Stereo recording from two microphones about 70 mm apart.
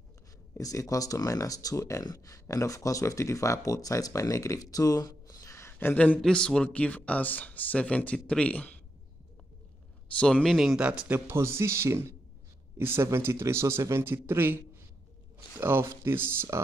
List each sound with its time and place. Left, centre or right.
0.6 s speech: left
5.7 s a sound: left
5.9 s speech: left
6.2 s speech: centre
10.1 s speech: centre
10.4 s speech: centre
10.8 s speech: centre
11.1 s speech: right